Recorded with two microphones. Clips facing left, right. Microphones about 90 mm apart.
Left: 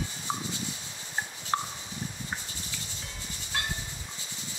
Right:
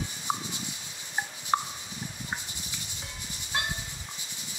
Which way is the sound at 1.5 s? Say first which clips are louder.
Right 2 dB; 15° right (ahead or behind).